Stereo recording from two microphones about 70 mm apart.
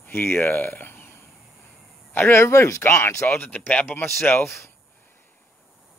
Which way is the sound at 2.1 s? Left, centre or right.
Left.